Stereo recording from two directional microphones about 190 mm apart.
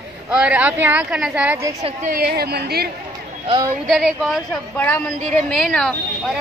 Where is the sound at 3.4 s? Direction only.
25° right (ahead or behind).